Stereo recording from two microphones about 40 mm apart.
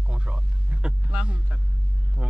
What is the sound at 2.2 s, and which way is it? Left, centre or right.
Speech, centre.